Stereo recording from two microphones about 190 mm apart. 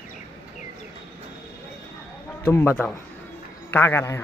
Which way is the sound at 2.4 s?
15° left (ahead or behind).